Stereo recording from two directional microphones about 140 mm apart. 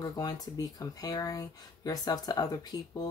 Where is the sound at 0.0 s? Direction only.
25° left (ahead or behind).